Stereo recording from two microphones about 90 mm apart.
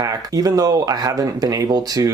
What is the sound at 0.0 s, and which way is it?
Speech, 40° right (ahead or behind).